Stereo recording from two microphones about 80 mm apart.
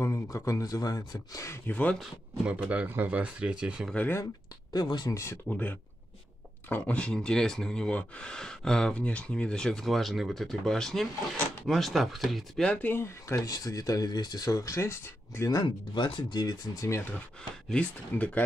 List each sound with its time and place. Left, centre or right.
0.0 s speech: left
1.7 s speech: left
2.6 s speech: centre
4.7 s speech: left
5.1 s speech: left
5.5 s speech: left; by 12.6 s centre
12.6 s speech: left
13.5 s speech: left
15.5 s speech: left
16.8 s speech: left
17.7 s speech: centre